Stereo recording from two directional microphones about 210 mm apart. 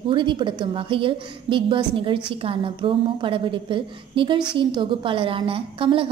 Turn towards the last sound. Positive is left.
turn(degrees=-25)  # may be behind; listen again after turning